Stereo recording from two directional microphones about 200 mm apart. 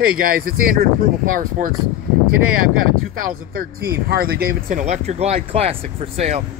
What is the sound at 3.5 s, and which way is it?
Speech, 50° right (ahead or behind).